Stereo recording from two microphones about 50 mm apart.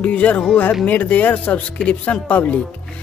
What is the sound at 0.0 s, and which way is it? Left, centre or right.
Speech, left.